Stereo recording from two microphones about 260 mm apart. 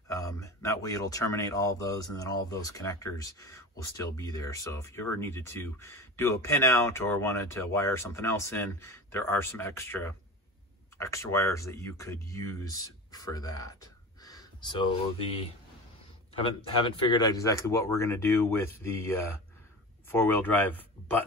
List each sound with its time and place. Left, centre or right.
0.1 s speech: centre